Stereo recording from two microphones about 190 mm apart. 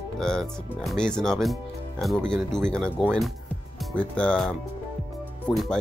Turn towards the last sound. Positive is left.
turn(degrees=0)  # may be behind; listen again after turning